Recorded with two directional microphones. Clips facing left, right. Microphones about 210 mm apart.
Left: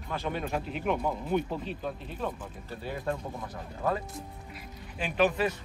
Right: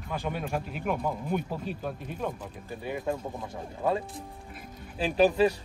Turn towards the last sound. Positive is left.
turn(degrees=-35)  # may be behind; listen again after turning